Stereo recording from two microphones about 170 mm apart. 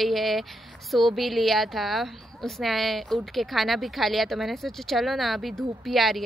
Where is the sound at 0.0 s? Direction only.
Centre (ahead or behind).